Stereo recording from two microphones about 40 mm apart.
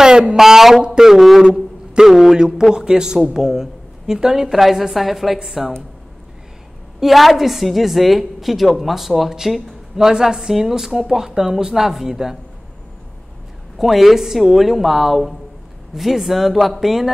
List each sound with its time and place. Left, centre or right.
0.0 s a sound: centre
0.4 s speech: centre
1.1 s a woman's voice: centre
1.4 s speech: centre
4.5 s a woman's voice: centre
7.0 s a woman's voice: centre
13.7 s a woman's voice: centre